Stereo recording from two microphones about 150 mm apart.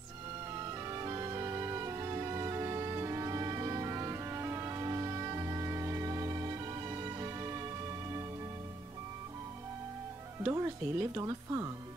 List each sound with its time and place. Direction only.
0.8 s music: 25° right (ahead or behind)
10.4 s speech: 20° right (ahead or behind)